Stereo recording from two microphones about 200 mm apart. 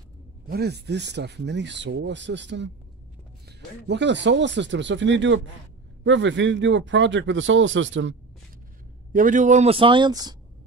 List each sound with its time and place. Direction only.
0.5 s speech: 55° right (ahead or behind)
9.1 s a man's voice: 40° right (ahead or behind); by 10.3 s 20° right (ahead or behind)